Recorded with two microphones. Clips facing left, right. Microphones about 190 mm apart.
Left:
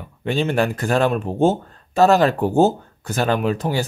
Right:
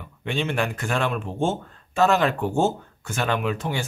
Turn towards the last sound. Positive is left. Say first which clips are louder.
# left 5 dB
turn(degrees=35)  # may be behind; listen again after turning